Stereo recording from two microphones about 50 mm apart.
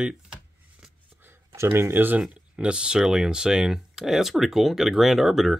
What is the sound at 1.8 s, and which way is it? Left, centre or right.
Speech, right.